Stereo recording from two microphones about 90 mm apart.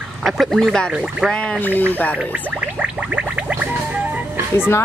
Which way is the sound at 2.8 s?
10° right (ahead or behind).